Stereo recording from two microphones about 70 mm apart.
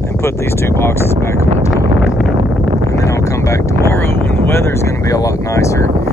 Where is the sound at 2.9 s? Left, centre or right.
Left.